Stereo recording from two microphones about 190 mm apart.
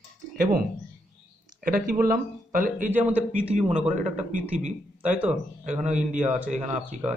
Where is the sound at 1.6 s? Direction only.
45° right (ahead or behind).